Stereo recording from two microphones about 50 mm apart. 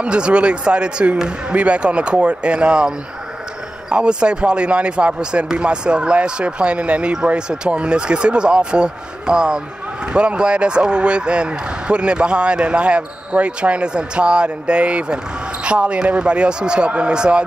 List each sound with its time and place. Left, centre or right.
0.0 s speech: right
3.9 s speech: centre